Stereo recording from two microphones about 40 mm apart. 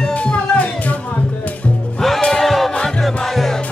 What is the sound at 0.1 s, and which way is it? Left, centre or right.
Music, left.